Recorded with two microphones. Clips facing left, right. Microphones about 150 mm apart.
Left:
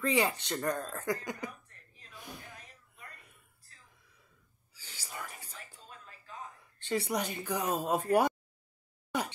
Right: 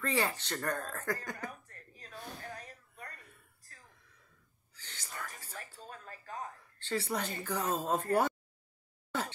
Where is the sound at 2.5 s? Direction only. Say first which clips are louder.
Right 7 dB; 40° right (ahead or behind).